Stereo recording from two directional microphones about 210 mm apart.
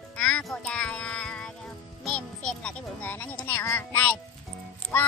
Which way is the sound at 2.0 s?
5° left (ahead or behind).